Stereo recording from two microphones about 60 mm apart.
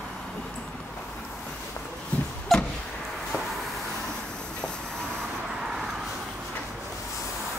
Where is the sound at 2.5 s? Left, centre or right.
Centre.